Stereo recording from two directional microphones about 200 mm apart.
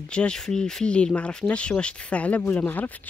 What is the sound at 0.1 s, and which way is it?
Speech, 5° left (ahead or behind).